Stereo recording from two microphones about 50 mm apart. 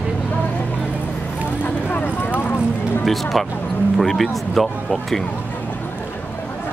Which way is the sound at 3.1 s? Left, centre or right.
Centre.